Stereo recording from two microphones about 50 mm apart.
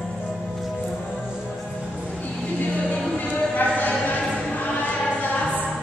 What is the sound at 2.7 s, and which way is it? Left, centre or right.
Music, left.